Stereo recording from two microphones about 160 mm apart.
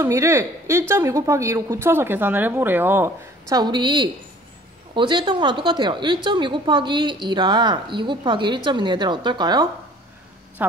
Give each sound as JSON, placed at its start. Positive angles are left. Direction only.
{"t": 0.0, "sound": "a woman's voice", "side_deg": -20}